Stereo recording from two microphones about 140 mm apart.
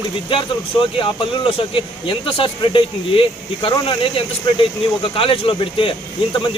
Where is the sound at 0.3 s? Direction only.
40° left (ahead or behind).